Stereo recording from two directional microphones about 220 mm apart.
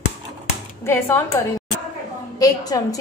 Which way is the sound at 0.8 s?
10° left (ahead or behind).